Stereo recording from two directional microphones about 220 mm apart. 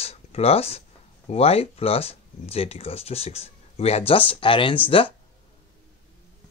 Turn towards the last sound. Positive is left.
turn(degrees=25)  # may be behind; listen again after turning